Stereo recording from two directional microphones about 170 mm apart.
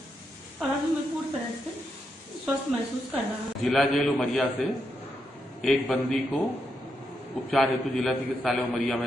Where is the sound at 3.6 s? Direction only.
Centre (ahead or behind).